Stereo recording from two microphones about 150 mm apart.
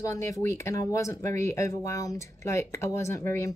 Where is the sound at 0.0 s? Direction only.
20° left (ahead or behind).